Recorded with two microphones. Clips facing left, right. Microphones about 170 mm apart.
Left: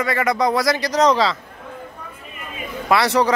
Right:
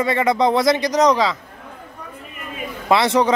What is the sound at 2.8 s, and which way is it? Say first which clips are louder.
Speech: right 1 dB; 25° right (ahead or behind).